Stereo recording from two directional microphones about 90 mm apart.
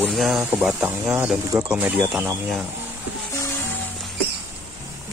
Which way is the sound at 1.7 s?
20° right (ahead or behind).